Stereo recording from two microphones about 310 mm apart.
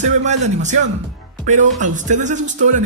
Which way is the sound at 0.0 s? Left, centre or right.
Right.